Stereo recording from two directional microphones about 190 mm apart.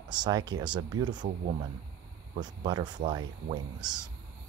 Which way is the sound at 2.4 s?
20° right (ahead or behind).